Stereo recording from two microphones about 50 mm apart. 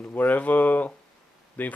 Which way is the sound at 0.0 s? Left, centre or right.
Left.